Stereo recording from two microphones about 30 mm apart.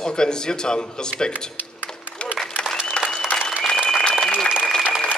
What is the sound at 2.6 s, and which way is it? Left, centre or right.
Applause, left.